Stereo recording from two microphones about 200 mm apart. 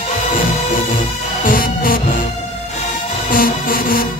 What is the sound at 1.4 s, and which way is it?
Music, 45° left (ahead or behind).